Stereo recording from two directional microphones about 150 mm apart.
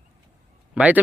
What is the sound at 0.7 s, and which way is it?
Speech, 10° right (ahead or behind).